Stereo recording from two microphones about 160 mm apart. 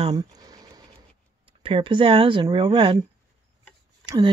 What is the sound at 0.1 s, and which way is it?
Cricket, 25° right (ahead or behind).